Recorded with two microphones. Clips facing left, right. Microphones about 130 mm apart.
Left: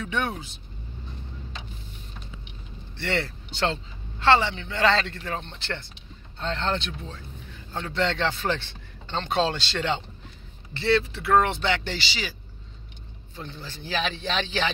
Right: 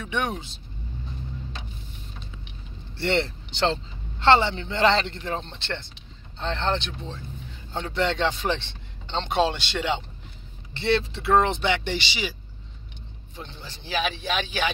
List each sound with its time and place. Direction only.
0.0 s speech: 20° right (ahead or behind)
3.0 s speech: 25° right (ahead or behind)
13.4 s speech: 20° right (ahead or behind)